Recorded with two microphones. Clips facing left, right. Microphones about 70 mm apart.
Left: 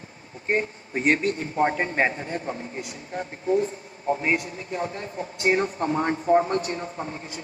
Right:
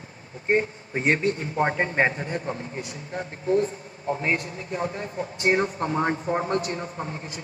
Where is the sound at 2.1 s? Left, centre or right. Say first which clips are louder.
Right 1 dB; right.